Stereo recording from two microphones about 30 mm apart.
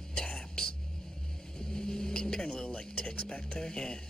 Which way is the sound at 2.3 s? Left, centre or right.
Left.